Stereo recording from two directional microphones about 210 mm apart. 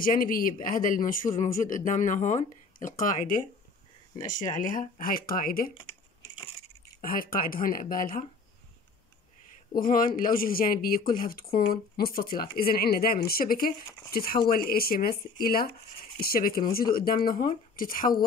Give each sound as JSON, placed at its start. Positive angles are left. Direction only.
{"t": 0.0, "sound": "a man's voice", "side_deg": 40}
{"t": 7.0, "sound": "speech", "side_deg": 45}
{"t": 9.8, "sound": "speech", "side_deg": 40}